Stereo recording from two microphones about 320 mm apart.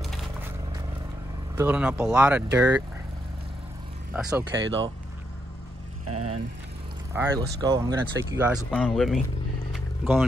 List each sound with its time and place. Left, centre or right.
0.0 s a sound: centre
1.5 s speech: centre
4.1 s speech: centre
6.0 s speech: right
7.2 s speech: centre
8.6 s speech: centre
9.7 s a sound: centre